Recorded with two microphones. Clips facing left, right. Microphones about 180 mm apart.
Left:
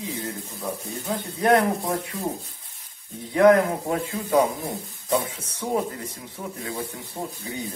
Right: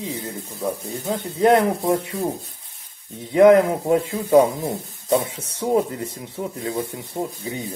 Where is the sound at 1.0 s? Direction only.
25° right (ahead or behind).